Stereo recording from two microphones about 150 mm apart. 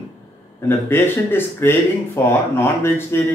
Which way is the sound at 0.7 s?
15° left (ahead or behind).